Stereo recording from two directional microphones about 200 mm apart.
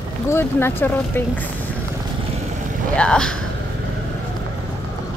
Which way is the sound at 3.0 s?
5° left (ahead or behind).